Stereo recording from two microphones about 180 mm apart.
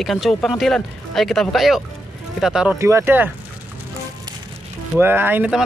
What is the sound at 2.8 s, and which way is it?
Speech, 15° right (ahead or behind).